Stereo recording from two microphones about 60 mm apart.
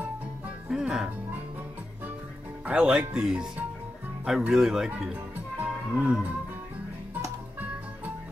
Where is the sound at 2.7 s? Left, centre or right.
Centre.